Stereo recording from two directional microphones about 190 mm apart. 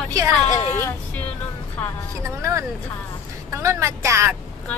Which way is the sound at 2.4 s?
15° right (ahead or behind).